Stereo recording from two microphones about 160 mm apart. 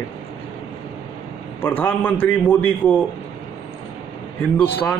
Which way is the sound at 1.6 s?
10° left (ahead or behind).